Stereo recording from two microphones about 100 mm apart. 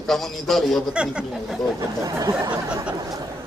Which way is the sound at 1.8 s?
35° right (ahead or behind).